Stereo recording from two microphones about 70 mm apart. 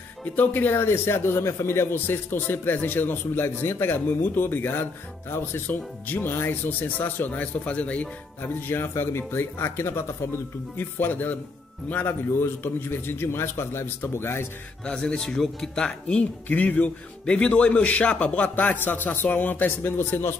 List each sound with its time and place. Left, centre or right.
0.2 s a man's voice: left
8.4 s speech: left
14.9 s speech: centre
16.4 s a man's voice: left